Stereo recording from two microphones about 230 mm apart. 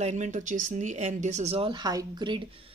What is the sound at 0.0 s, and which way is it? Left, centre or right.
Speech, right.